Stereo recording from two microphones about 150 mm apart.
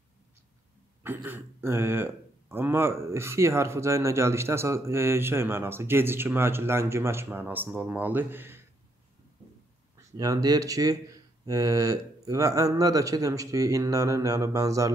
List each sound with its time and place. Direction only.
1.0 s a man's voice: 15° right (ahead or behind)
9.9 s speech: 25° right (ahead or behind)